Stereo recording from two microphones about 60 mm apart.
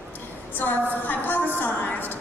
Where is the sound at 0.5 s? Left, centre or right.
Left.